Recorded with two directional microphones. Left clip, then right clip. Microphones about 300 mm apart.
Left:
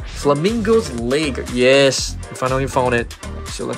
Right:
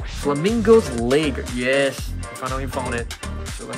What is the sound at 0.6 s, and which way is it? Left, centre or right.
Speech, centre.